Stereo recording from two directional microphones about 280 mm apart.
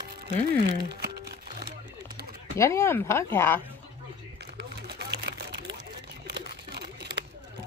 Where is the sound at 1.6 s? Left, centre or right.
Right.